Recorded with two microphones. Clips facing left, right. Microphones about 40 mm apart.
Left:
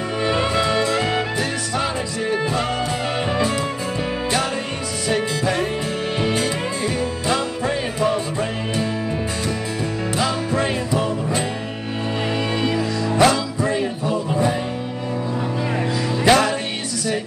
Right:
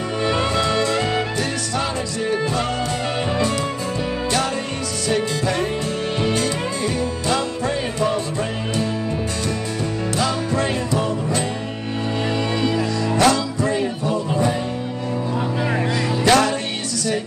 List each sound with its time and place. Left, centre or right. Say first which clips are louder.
0.2 s music: even; centre
5.1 s music: even; centre
10.1 s music: even; centre
13.1 s music: left 1 dB; centre
16.3 s music: even; centre